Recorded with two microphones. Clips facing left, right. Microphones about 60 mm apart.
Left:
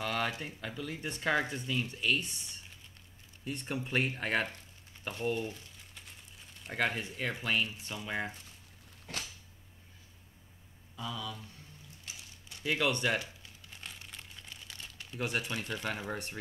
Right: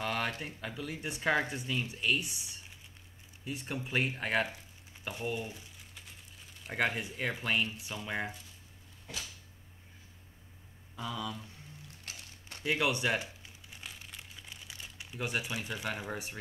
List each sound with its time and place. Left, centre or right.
0.0 s a sound: centre
0.6 s speech: centre
5.0 s crumpling: centre
7.8 s speech: centre
11.0 s speech: right
12.0 s a sound: right
12.6 s speech: centre
13.7 s crumpling: centre
15.2 s speech: centre